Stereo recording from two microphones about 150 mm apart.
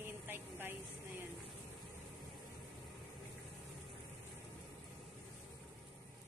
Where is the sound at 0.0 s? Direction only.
15° right (ahead or behind).